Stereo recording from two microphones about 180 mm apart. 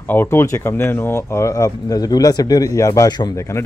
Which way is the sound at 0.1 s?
10° left (ahead or behind).